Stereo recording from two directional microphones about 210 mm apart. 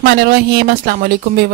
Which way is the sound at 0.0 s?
45° right (ahead or behind).